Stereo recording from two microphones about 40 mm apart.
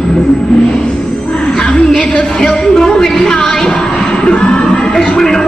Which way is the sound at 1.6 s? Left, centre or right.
Centre.